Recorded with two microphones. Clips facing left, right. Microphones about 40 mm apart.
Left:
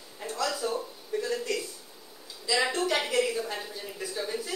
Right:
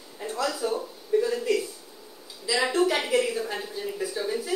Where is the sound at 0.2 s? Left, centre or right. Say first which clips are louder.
Right 3 dB; centre.